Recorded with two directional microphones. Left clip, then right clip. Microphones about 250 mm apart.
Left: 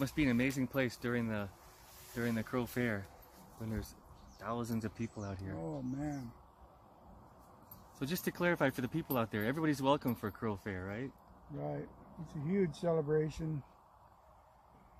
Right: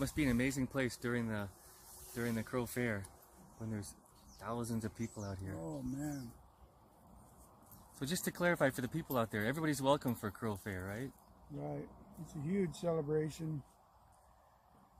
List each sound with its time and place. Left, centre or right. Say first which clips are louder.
0.0 s speech: left 2 dB; centre
4.4 s speech: left 2 dB; centre
5.6 s speech: left 2 dB; centre
8.0 s speech: left 1 dB; centre
11.5 s speech: left 3 dB; centre